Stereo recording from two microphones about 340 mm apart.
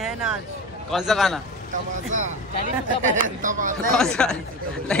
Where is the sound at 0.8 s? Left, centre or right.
Centre.